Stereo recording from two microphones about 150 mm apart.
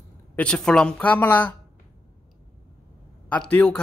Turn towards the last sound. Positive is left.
turn(degrees=5)  # may be behind; listen again after turning